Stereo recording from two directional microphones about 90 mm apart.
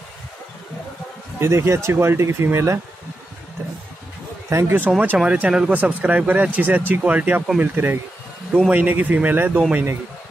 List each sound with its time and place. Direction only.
1.4 s speech: 30° right (ahead or behind)
4.5 s speech: 30° right (ahead or behind)
5.2 s speech: 10° right (ahead or behind)